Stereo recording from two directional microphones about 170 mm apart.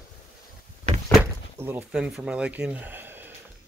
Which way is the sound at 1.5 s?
10° right (ahead or behind).